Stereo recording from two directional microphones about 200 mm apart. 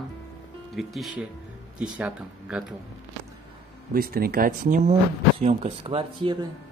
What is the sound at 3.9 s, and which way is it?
Speech, 50° right (ahead or behind).